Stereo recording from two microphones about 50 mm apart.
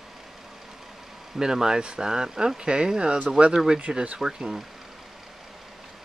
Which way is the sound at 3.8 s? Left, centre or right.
Right.